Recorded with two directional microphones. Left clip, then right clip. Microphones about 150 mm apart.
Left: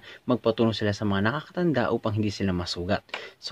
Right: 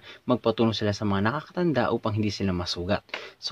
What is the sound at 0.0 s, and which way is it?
Speech, 5° right (ahead or behind).